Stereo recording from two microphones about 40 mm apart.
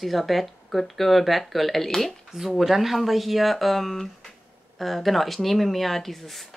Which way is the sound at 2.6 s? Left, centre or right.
Centre.